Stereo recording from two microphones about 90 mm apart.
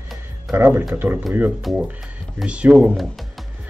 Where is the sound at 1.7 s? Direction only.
Centre (ahead or behind).